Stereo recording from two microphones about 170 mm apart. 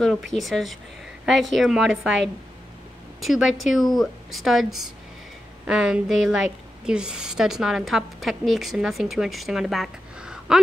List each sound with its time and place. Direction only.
0.0 s a woman's voice: centre (ahead or behind)